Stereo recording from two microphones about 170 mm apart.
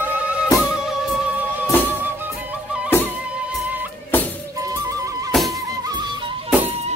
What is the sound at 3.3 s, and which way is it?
Music, 10° right (ahead or behind).